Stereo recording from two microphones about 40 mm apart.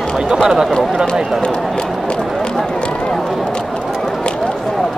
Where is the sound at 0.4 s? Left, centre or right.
Centre.